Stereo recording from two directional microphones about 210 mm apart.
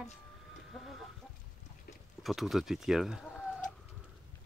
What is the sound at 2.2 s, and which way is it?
Speech, centre (ahead or behind).